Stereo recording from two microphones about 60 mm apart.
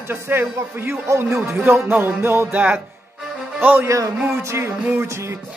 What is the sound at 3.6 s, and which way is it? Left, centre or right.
Speech, right.